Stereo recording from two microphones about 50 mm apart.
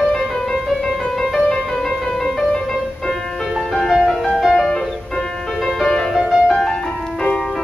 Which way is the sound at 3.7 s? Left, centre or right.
Centre.